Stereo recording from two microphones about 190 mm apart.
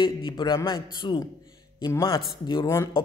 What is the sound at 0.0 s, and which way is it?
A man's voice, 25° left (ahead or behind).